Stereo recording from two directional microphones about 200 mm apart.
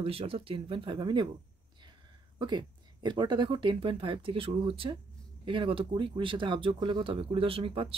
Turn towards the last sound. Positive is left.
turn(degrees=-25)  # may be behind; listen again after turning